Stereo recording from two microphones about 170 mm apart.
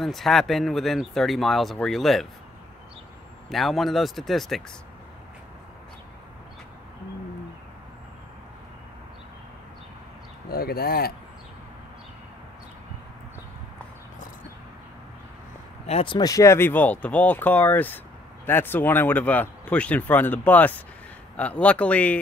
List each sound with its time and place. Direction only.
0.0 s speech: centre (ahead or behind)
3.4 s speech: centre (ahead or behind)
10.5 s speech: 65° left (ahead or behind)
15.9 s speech: 35° left (ahead or behind)
16.2 s speech: 20° left (ahead or behind)